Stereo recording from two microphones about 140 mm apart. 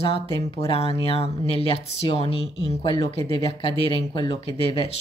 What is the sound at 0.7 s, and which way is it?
Speech, 40° left (ahead or behind).